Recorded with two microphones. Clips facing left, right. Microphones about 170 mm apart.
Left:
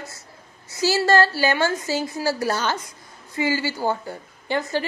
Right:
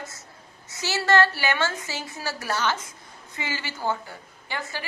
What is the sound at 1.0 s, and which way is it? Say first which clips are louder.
A woman's voice: left 1 dB; 35° left (ahead or behind).